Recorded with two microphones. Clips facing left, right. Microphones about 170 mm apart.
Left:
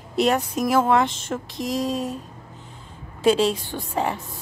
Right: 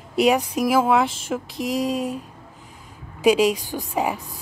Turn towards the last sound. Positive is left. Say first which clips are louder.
# right 1 dB
turn(degrees=-10)  # may be behind; listen again after turning